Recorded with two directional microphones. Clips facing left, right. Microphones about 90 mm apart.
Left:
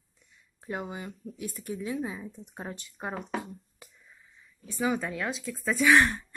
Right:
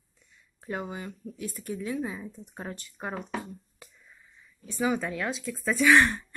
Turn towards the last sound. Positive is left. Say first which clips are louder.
# right 1 dB
turn(degrees=5)  # may be behind; listen again after turning